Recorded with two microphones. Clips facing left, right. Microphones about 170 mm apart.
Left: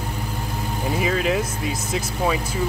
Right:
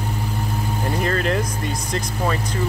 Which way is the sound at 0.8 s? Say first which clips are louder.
Left 1 dB; 5° left (ahead or behind).